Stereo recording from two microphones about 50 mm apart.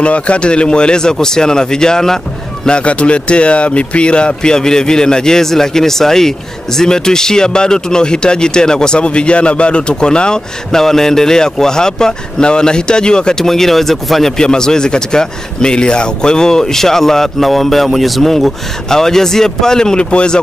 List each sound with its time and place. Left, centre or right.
0.0 s speech: left